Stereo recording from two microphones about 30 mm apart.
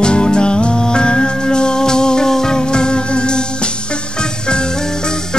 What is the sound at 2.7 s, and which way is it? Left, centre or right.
Music, left.